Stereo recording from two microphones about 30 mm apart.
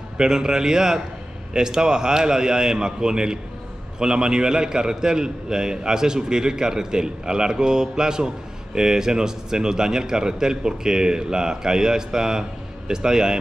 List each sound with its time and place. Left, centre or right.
0.2 s a man's voice: right